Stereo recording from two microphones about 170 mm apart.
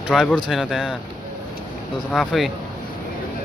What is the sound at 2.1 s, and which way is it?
Speech, centre (ahead or behind).